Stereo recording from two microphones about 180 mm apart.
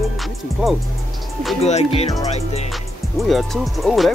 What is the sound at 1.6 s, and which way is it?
Music, 35° left (ahead or behind).